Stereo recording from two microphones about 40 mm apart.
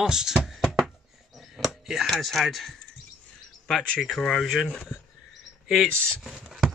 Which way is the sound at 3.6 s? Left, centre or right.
Centre.